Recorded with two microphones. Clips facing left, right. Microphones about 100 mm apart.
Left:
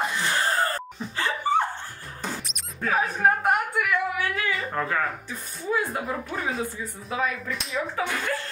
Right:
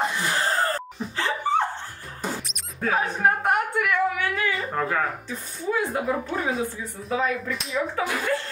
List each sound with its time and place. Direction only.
0.0 s gasp: 5° right (ahead or behind)
2.2 s music: centre (ahead or behind)
3.2 s a woman's voice: centre (ahead or behind)
3.7 s a sound: 35° right (ahead or behind)
4.5 s a sound: 5° right (ahead or behind)
5.6 s speech: centre (ahead or behind)